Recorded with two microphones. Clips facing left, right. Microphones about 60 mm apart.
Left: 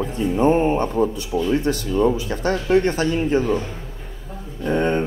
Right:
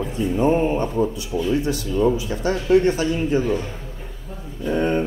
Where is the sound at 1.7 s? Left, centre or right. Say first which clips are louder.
Left 1 dB; left.